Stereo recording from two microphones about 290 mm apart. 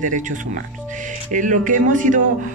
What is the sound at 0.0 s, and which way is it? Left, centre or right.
Speech, right.